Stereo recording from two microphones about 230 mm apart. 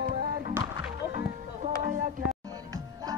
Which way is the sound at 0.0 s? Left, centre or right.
Right.